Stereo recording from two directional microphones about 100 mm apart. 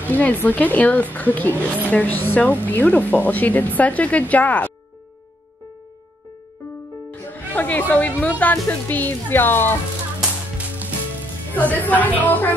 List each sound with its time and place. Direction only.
0.1 s speech: 15° left (ahead or behind)
7.1 s music: 15° left (ahead or behind)
7.9 s speech: 15° left (ahead or behind)
11.5 s speech: 15° left (ahead or behind)